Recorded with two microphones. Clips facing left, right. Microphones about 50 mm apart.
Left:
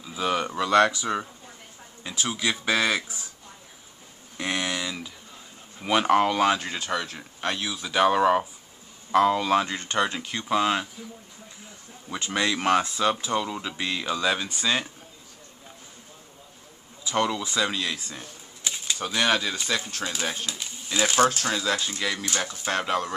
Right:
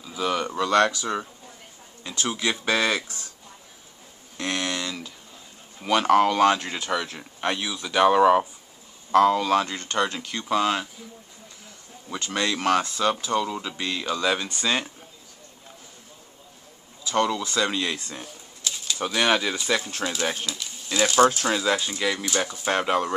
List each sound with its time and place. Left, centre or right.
0.1 s speech: centre
4.4 s speech: centre
12.1 s speech: centre
17.0 s speech: centre
17.6 s speech: centre
18.6 s bird: left
18.9 s speech: centre
20.4 s a sound: left
21.2 s speech: right
21.5 s speech: centre